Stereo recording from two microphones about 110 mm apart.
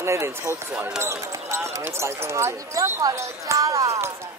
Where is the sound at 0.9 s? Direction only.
25° right (ahead or behind).